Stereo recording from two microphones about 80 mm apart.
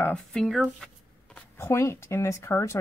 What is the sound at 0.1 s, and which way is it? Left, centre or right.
Speech, centre.